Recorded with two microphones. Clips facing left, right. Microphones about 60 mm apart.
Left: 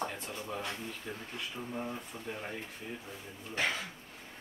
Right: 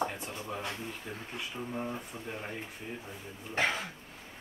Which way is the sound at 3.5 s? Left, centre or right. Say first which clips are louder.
Right 3 dB; right.